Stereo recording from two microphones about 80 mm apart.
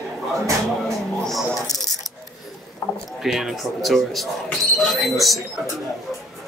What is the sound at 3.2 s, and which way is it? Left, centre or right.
Speech, centre.